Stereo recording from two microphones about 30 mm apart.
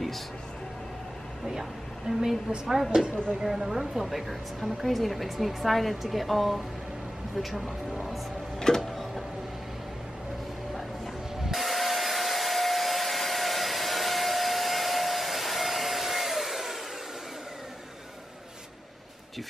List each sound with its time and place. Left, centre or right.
1.5 s a woman's voice: centre
2.9 s speech: right
3.4 s speech: centre
8.5 s printer: left
8.8 s tick-tock: centre
11.4 s hair dryer: centre